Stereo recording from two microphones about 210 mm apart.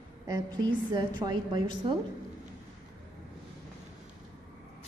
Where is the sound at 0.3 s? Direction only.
20° right (ahead or behind).